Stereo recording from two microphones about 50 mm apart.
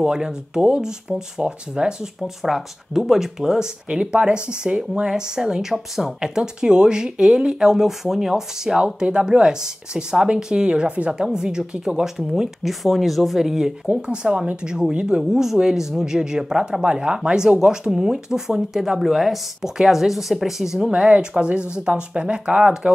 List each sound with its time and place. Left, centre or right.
0.0 s speech: centre
13.8 s speech: centre